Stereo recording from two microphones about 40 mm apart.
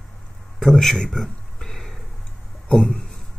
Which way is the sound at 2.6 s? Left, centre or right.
Centre.